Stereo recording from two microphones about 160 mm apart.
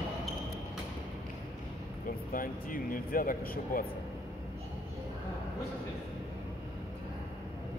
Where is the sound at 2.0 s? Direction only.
60° left (ahead or behind).